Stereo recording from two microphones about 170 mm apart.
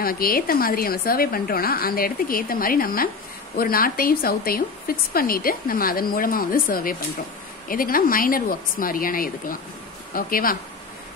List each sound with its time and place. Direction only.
0.0 s speech: 60° left (ahead or behind)